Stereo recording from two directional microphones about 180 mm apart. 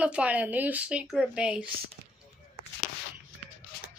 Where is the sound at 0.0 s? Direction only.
5° right (ahead or behind).